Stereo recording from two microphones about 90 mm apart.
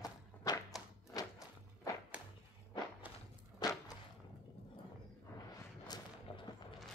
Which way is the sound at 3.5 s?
45° left (ahead or behind).